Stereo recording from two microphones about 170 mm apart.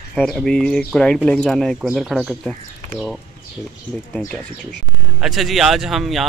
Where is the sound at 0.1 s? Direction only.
5° left (ahead or behind).